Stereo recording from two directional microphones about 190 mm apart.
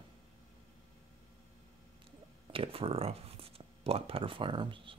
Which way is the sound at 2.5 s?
30° right (ahead or behind).